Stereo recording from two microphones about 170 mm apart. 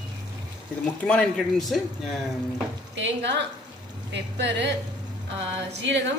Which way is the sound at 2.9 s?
90° right.